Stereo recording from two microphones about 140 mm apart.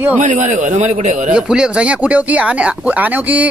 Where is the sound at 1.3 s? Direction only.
5° right (ahead or behind).